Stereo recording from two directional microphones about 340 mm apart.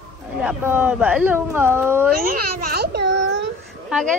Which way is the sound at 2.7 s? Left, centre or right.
Right.